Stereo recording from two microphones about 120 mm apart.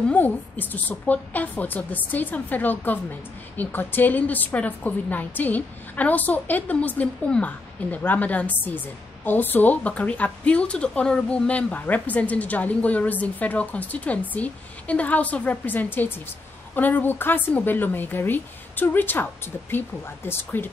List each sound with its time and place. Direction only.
0.0 s a woman's voice: 15° left (ahead or behind)